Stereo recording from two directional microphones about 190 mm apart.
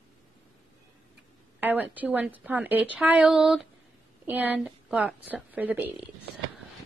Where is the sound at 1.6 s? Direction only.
10° right (ahead or behind).